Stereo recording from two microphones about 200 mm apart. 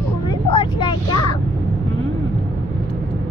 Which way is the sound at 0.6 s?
20° left (ahead or behind).